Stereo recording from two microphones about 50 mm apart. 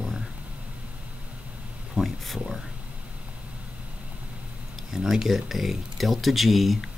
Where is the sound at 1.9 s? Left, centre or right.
Centre.